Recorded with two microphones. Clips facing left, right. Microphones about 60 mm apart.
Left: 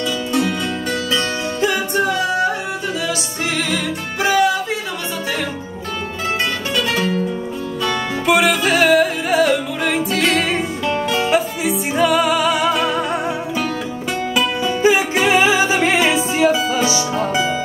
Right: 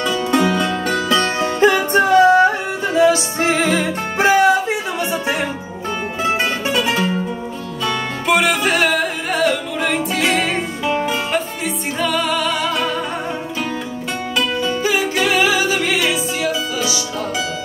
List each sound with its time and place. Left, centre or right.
0.3 s music: right
6.2 s music: centre
7.8 s music: centre
14.3 s music: centre
14.8 s music: left